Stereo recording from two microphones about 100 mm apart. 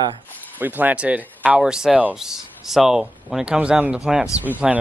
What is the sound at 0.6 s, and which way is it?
Speech, 15° right (ahead or behind).